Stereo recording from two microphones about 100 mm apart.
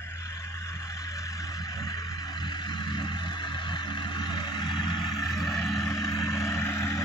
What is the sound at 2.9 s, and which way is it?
Vehicle, 50° left (ahead or behind).